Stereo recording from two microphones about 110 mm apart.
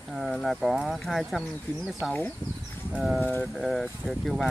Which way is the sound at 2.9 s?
Centre (ahead or behind).